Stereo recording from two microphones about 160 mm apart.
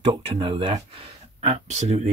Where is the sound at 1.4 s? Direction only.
45° right (ahead or behind).